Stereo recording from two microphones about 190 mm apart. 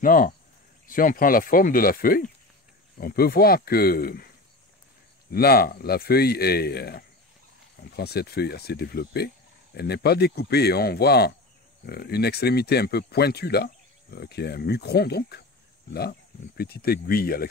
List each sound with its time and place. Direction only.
0.0 s speech: 45° left (ahead or behind)
5.3 s speech: 55° left (ahead or behind)